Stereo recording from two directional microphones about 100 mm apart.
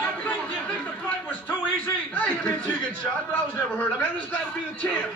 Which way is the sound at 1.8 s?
20° left (ahead or behind).